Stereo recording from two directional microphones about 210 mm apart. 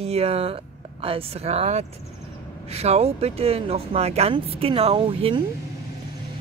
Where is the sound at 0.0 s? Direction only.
30° right (ahead or behind).